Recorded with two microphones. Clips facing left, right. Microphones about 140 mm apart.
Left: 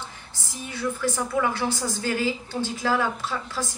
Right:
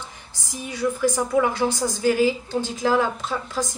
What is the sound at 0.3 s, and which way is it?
A woman's voice, 15° right (ahead or behind).